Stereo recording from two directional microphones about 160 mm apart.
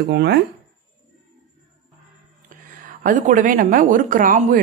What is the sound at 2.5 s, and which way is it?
A woman's voice, 55° right (ahead or behind).